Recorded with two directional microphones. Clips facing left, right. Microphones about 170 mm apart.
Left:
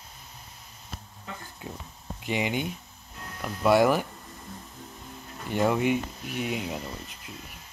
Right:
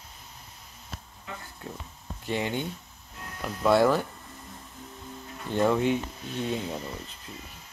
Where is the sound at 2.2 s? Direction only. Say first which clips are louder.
Left 1 dB; 15° left (ahead or behind).